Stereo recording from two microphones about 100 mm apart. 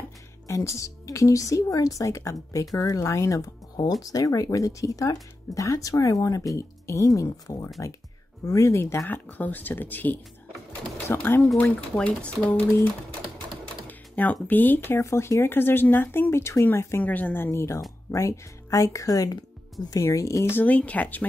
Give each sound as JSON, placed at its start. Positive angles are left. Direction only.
{"t": 0.5, "sound": "speech", "side_deg": 30}
{"t": 13.8, "sound": "speech", "side_deg": 15}